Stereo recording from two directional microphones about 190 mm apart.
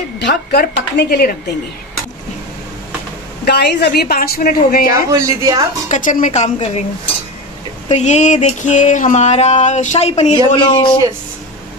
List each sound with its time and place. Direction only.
0.2 s speech: 60° left (ahead or behind)
3.4 s a woman's voice: 60° left (ahead or behind)
4.8 s a man's voice: 15° right (ahead or behind)
5.9 s a sound: 45° left (ahead or behind)
7.9 s a sound: 35° left (ahead or behind)
10.3 s speech: 25° left (ahead or behind)